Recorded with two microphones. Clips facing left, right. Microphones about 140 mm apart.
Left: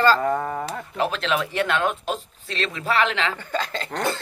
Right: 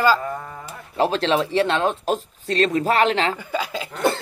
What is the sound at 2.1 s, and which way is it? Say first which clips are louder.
Speech: right 6 dB; 40° right (ahead or behind).